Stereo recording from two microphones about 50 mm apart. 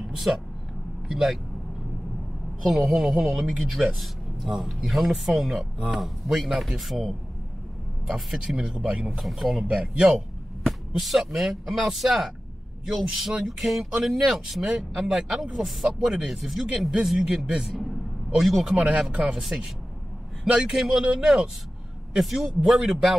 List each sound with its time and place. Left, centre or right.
1.0 s speech: centre
2.6 s a man's voice: centre
8.1 s a man's voice: centre
8.5 s speech: centre
9.2 s a man's voice: centre
9.7 s speech: centre
10.9 s a man's voice: centre
18.8 s speech: centre
20.4 s speech: right
20.7 s a man's voice: centre